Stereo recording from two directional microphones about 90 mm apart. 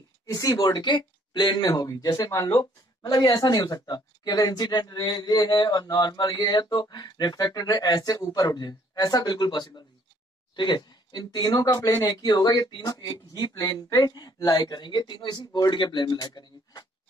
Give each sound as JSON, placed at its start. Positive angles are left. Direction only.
{"t": 0.3, "sound": "speech", "side_deg": 40}